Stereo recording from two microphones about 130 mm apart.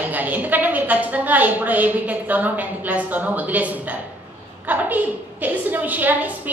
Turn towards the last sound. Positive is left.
turn(degrees=-15)  # may be behind; listen again after turning